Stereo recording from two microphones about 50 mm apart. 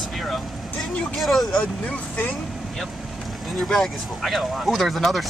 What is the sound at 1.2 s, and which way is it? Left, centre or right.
Speech, centre.